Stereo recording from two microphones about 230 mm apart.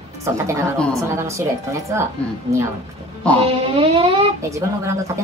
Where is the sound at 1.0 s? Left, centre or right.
Centre.